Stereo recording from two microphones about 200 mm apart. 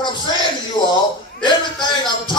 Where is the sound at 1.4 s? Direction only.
25° left (ahead or behind).